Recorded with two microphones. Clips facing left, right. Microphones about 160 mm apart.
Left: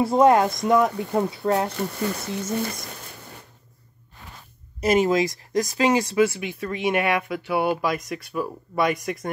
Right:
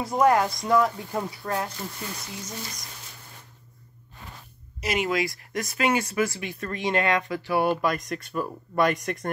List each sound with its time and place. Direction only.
0.0 s speech: 25° left (ahead or behind)
1.7 s speech: 65° left (ahead or behind)
2.4 s speech: 55° left (ahead or behind)
4.8 s speech: 40° left (ahead or behind)
6.1 s speech: 20° left (ahead or behind); by 9.3 s centre (ahead or behind)